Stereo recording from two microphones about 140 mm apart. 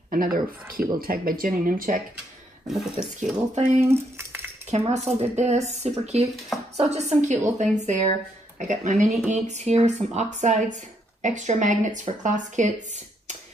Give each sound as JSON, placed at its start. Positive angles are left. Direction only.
{"t": 0.1, "sound": "speech", "side_deg": -90}
{"t": 2.7, "sound": "speech", "side_deg": -5}
{"t": 3.5, "sound": "speech", "side_deg": -55}
{"t": 3.9, "sound": "a sound", "side_deg": -15}
{"t": 4.6, "sound": "a woman's voice", "side_deg": -50}